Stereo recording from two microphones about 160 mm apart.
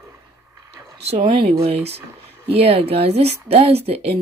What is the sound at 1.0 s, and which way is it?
Speech, 40° right (ahead or behind).